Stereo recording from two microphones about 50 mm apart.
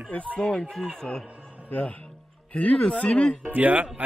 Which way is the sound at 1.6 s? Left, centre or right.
Left.